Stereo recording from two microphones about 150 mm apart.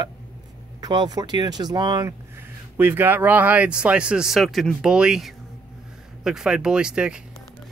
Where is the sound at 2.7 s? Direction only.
15° right (ahead or behind).